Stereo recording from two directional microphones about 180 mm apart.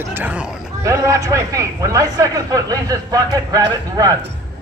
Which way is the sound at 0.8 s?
20° right (ahead or behind).